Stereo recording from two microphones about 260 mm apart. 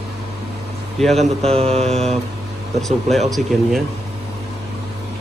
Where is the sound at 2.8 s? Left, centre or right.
Centre.